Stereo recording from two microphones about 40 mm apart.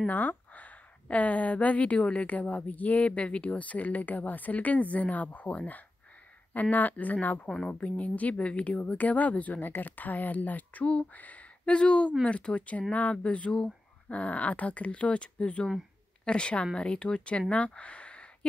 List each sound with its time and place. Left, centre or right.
0.0 s speech: left
8.9 s speech: left
9.6 s speech: left
11.7 s speech: left